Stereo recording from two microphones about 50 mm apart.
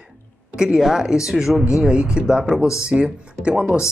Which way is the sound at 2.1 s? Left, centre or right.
Centre.